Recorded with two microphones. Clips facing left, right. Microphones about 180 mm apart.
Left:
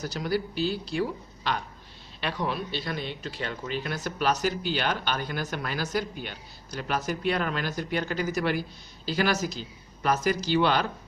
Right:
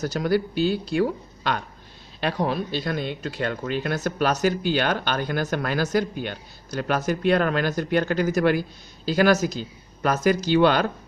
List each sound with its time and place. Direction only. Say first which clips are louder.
0.0 s speech: right 6 dB; 55° right (ahead or behind)
2.1 s speech: right 6 dB; 40° right (ahead or behind)